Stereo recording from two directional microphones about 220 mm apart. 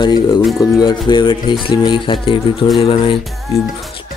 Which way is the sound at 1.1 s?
20° left (ahead or behind).